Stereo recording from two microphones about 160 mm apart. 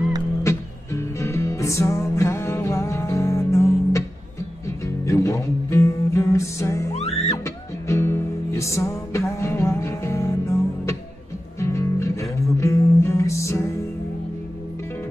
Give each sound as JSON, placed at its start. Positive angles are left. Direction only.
{"t": 0.4, "sound": "music", "side_deg": 20}